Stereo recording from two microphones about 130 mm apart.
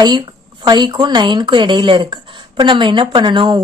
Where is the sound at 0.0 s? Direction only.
35° right (ahead or behind).